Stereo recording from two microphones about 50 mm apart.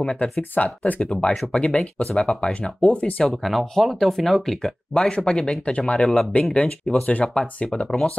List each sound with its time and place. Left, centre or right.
0.0 s speech: centre
0.4 s speech: left
1.0 s speech: centre
1.3 s speech: centre
1.6 s speech: centre
3.3 s speech: centre
6.3 s speech: left